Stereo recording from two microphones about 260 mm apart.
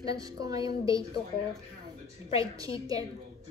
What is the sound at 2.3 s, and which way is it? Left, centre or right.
Speech, centre.